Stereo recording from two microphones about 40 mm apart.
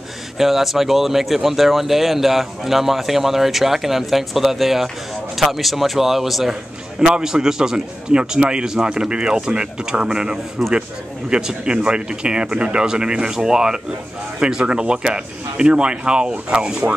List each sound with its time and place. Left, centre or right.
0.4 s speech: centre
7.0 s speech: right